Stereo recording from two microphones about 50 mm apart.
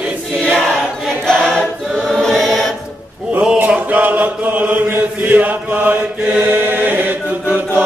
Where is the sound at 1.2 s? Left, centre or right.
Centre.